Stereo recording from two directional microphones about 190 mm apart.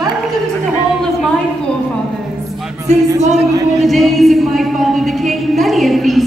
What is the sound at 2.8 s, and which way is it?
Music, 35° right (ahead or behind).